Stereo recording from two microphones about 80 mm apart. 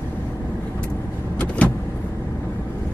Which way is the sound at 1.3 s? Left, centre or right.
Centre.